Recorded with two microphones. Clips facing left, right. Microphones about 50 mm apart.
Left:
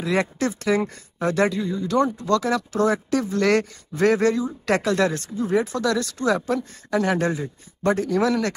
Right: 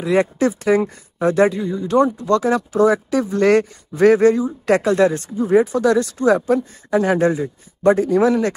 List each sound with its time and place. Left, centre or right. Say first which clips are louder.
0.0 s speech: right 6 dB; right